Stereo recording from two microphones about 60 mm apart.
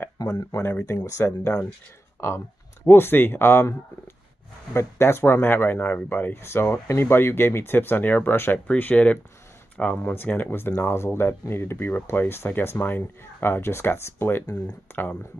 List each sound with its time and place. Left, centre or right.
0.2 s speech: left
0.6 s speech: left
2.8 s speech: left
4.7 s speech: left
10.0 s speech: left